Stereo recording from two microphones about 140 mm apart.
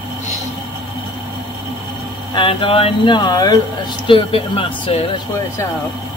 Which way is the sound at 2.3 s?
40° left (ahead or behind).